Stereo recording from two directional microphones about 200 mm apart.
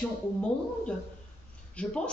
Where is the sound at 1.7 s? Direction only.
5° left (ahead or behind).